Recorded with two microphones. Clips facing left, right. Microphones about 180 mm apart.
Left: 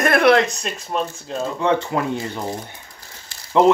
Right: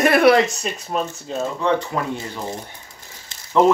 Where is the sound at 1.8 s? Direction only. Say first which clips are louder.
Left 2 dB; 25° left (ahead or behind).